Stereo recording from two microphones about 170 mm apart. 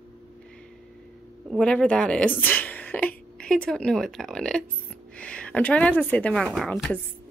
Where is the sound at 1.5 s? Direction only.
5° left (ahead or behind).